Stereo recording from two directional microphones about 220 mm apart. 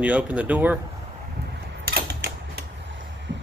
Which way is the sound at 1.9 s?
45° right (ahead or behind).